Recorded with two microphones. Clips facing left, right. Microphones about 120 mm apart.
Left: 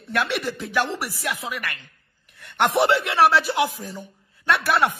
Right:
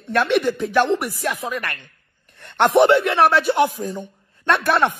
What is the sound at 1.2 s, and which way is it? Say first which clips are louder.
A man's voice: right 4 dB; 40° right (ahead or behind).